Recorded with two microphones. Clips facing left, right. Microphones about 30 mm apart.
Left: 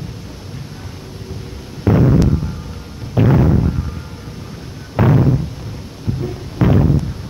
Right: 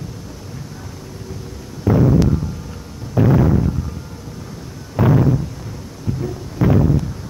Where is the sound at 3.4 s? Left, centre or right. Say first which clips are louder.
Left 1 dB; centre.